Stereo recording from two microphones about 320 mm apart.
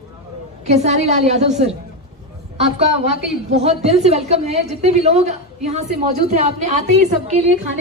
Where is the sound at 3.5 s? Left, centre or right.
Centre.